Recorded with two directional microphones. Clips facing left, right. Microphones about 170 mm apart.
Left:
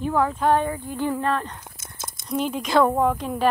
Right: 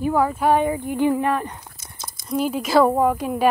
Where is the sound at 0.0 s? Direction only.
5° right (ahead or behind).